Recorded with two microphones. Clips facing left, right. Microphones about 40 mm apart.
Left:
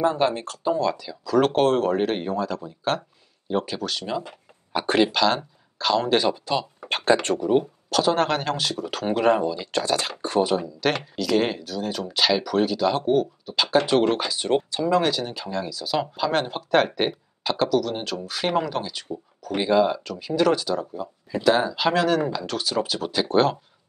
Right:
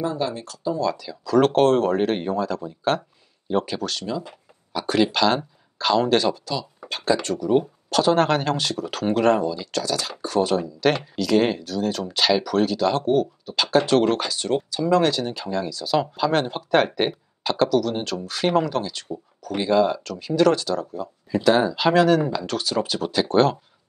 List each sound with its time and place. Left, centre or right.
0.0 s speech: left
0.9 s speech: centre
4.0 s speech: left
5.1 s speech: centre
6.0 s speech: centre
6.4 s speech: left
7.5 s speech: centre; by 10.1 s left
10.4 s speech: centre
14.5 s speech: left
14.9 s speech: centre